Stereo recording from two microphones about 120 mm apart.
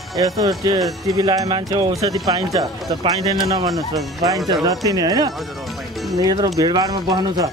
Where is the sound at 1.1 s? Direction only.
30° right (ahead or behind).